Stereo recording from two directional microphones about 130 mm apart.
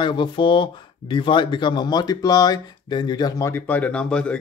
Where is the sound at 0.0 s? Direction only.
35° left (ahead or behind).